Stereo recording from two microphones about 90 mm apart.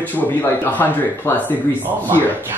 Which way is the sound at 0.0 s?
20° left (ahead or behind).